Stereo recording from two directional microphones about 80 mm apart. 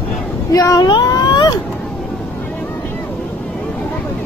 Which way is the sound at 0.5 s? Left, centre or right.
Left.